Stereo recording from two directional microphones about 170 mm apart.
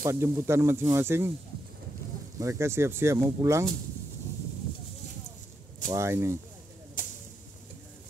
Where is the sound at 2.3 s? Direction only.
15° right (ahead or behind).